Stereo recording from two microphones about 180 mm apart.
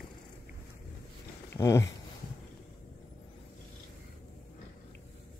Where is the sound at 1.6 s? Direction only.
15° left (ahead or behind).